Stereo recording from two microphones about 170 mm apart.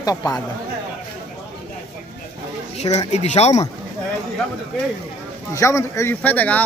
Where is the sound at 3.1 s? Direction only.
40° left (ahead or behind).